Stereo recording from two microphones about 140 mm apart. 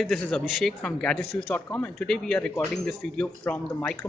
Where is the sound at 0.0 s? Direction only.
5° left (ahead or behind).